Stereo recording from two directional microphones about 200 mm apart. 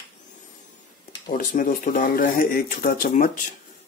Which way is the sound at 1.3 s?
45° left (ahead or behind).